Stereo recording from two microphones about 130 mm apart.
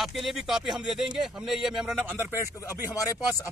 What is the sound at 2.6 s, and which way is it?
Speech, 25° left (ahead or behind).